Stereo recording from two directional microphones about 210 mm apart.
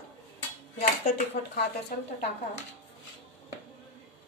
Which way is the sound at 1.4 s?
40° left (ahead or behind).